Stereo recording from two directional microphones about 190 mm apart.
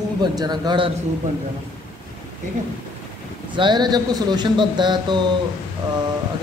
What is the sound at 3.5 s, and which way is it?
A man's voice, 25° right (ahead or behind).